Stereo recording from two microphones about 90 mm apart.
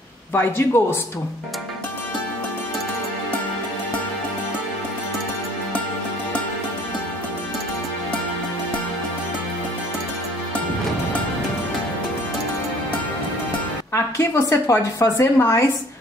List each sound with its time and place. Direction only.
0.3 s a man's voice: 25° left (ahead or behind)
13.9 s a woman's voice: 30° left (ahead or behind)